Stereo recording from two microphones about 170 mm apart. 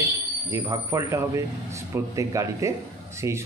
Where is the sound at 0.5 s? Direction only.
15° right (ahead or behind).